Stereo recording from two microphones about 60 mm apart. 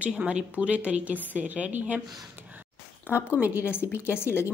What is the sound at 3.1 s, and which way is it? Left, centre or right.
Speech, right.